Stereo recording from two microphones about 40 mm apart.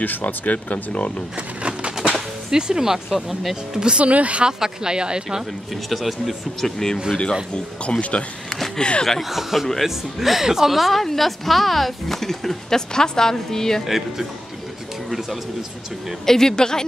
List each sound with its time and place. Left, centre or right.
0.0 s speech: left
1.6 s a sound: right
2.5 s speech: centre
4.0 s speech: right
4.5 s speech: centre
5.9 s a woman's voice: centre
6.6 s speech: centre
7.1 s speech: left
8.5 s a sound: centre
9.2 s a woman's voice: centre
13.8 s speech: centre
16.3 s speech: centre